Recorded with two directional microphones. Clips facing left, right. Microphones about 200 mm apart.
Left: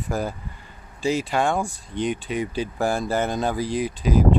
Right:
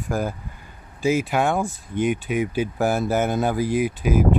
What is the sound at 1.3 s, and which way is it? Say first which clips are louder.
Speech: right 1 dB; 5° right (ahead or behind).